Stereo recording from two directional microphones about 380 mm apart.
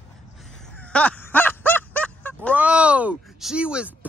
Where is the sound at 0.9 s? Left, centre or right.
Centre.